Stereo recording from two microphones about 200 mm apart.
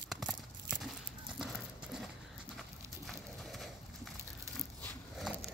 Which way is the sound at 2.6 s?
Centre (ahead or behind).